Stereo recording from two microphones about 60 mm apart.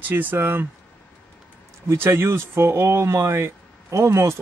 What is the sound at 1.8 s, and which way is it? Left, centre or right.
Speech, right.